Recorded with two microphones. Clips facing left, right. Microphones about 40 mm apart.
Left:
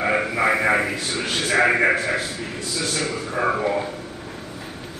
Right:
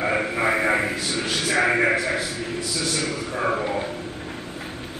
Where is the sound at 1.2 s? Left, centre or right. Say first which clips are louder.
Left 3 dB; left.